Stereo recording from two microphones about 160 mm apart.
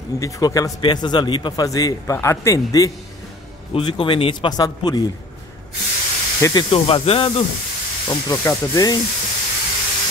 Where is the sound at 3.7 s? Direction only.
35° left (ahead or behind).